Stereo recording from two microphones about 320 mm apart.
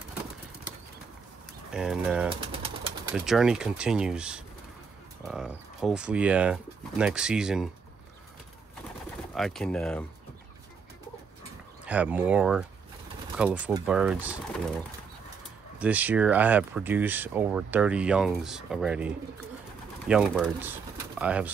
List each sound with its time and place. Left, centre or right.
1.7 s speech: centre
2.4 s a sound: centre
3.3 s speech: centre
9.3 s speech: centre
11.8 s speech: centre
15.8 s speech: centre